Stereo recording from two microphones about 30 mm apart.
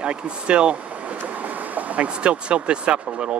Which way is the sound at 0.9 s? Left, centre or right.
Right.